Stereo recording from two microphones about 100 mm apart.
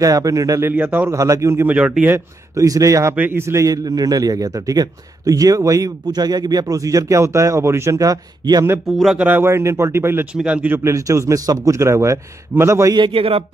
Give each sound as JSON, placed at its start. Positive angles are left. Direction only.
{"t": 0.0, "sound": "a man's voice", "side_deg": -35}
{"t": 0.7, "sound": "speech", "side_deg": -20}
{"t": 1.1, "sound": "a man's voice", "side_deg": -30}
{"t": 1.7, "sound": "speech", "side_deg": -15}
{"t": 2.5, "sound": "a man's voice", "side_deg": -35}
{"t": 8.8, "sound": "speech", "side_deg": 0}
{"t": 9.2, "sound": "speech", "side_deg": -20}
{"t": 10.3, "sound": "speech", "side_deg": -10}
{"t": 10.8, "sound": "a man's voice", "side_deg": -30}
{"t": 12.9, "sound": "a man's voice", "side_deg": -50}